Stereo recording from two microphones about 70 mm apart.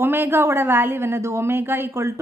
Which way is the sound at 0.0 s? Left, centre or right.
Right.